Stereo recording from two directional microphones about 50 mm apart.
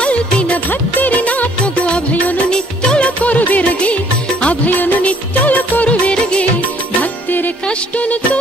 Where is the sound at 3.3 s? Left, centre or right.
Left.